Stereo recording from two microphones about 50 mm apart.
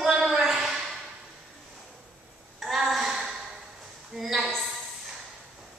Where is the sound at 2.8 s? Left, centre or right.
Centre.